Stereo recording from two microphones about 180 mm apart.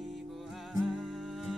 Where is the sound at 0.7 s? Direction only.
Centre (ahead or behind).